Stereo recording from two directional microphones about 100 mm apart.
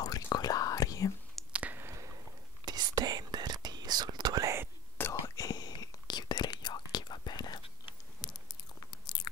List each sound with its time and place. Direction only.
0.0 s whispering: 40° left (ahead or behind)
1.5 s a sound: 15° right (ahead or behind)
2.6 s whispering: 45° right (ahead or behind)
5.0 s whispering: 20° left (ahead or behind)
5.3 s whispering: 40° left (ahead or behind)
7.6 s biting: 50° left (ahead or behind)